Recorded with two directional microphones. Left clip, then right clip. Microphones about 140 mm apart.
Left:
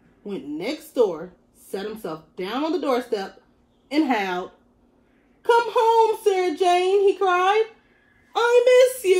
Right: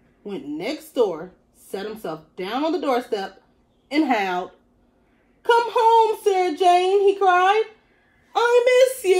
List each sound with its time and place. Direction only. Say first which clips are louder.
0.2 s speech: right 1 dB; 10° right (ahead or behind)